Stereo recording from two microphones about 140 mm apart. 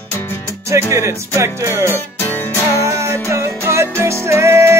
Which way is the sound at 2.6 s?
20° right (ahead or behind).